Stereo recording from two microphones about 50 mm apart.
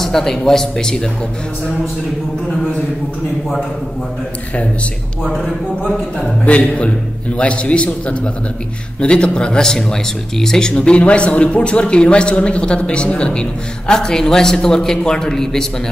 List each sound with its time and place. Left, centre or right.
0.0 s speech: centre
6.4 s a man's voice: left; by 10.7 s centre
10.7 s a man's voice: left